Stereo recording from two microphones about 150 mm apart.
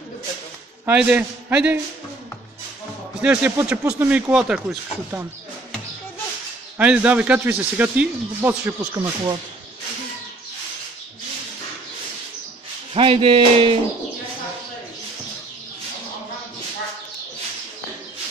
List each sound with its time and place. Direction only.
0.8 s speech: 10° right (ahead or behind)
3.2 s speech: 10° right (ahead or behind)
6.8 s speech: 10° right (ahead or behind)
8.9 s speech: 30° right (ahead or behind)
12.9 s a sound: 40° right (ahead or behind)